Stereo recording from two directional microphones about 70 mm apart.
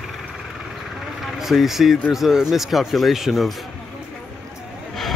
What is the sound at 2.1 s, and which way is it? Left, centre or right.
Speech, centre.